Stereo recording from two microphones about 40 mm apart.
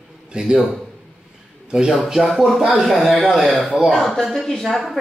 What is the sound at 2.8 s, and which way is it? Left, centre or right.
Speech, centre.